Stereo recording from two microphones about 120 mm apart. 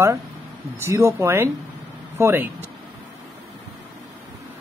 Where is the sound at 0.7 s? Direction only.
25° right (ahead or behind).